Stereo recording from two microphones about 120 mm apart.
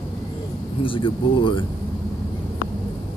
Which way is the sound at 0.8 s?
45° left (ahead or behind).